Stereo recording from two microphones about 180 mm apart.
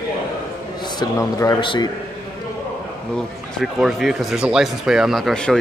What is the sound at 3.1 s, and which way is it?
Speech, centre (ahead or behind).